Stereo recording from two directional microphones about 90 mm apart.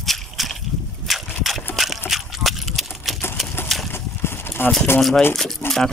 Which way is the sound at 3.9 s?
25° left (ahead or behind).